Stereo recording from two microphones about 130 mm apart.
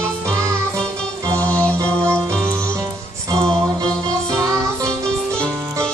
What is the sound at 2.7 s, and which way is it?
Music, 25° right (ahead or behind).